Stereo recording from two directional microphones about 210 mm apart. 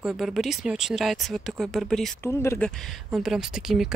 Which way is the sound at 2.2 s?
10° left (ahead or behind).